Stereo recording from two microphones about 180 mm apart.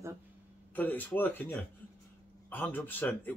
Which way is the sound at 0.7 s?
10° left (ahead or behind).